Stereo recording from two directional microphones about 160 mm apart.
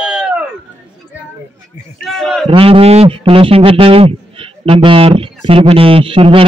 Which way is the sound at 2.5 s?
35° right (ahead or behind).